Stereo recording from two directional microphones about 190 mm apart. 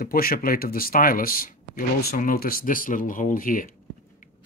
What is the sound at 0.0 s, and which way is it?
Speech, 50° left (ahead or behind).